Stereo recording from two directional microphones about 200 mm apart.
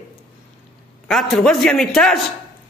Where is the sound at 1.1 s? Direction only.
Centre (ahead or behind).